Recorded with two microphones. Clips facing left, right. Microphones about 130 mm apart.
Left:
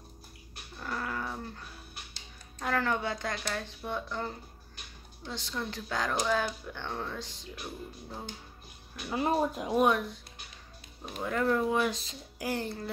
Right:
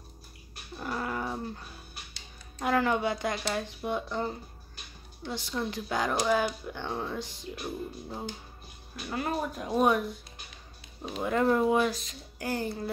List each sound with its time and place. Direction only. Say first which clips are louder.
0.7 s dog: right 3 dB; 20° right (ahead or behind)
2.6 s speech: right 4 dB; 15° right (ahead or behind)
9.1 s speech: left 3 dB; 25° left (ahead or behind)
9.6 s speech: even; 10° left (ahead or behind)
11.1 s speech: right 3 dB; 20° right (ahead or behind)
11.9 s speech: right 1 dB; 30° left (ahead or behind)
12.4 s speech: right 2 dB; centre (ahead or behind)